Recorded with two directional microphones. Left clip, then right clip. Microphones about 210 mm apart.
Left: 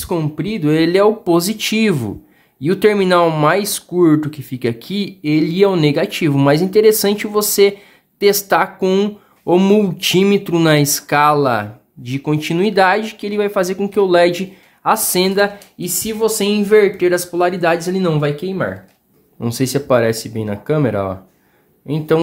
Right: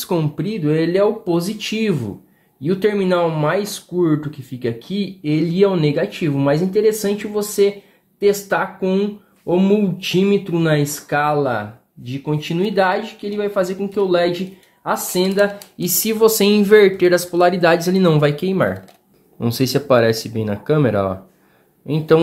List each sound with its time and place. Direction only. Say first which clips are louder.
0.0 s speech: left 1 dB; 10° left (ahead or behind)
0.6 s speech: left 3 dB; 25° left (ahead or behind)
16.0 s speech: right 3 dB; 10° right (ahead or behind)
19.4 s speech: even; 5° left (ahead or behind)